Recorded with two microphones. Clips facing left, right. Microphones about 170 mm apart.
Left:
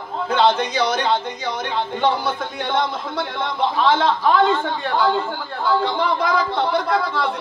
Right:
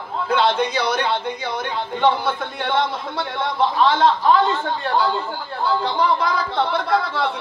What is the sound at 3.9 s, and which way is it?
Speech, 50° left (ahead or behind).